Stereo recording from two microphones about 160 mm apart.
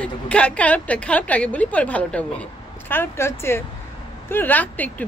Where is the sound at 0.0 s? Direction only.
5° left (ahead or behind).